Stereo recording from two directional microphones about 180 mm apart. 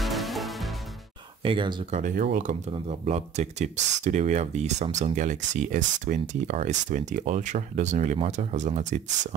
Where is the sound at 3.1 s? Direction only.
40° right (ahead or behind).